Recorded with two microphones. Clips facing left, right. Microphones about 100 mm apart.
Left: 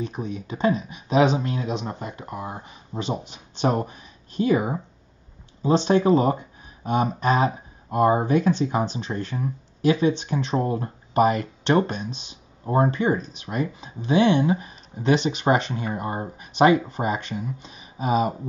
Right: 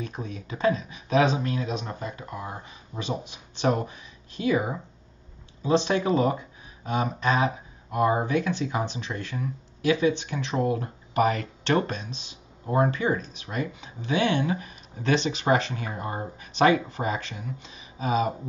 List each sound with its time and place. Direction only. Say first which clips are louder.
0.0 s speech: left 5 dB; 25° left (ahead or behind)
2.9 s speech: left 3 dB; 30° left (ahead or behind)